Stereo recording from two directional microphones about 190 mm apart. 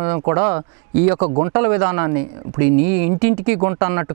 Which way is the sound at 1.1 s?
35° right (ahead or behind).